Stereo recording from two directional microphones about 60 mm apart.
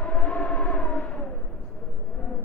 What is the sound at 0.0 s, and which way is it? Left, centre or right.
Civil defense siren, left.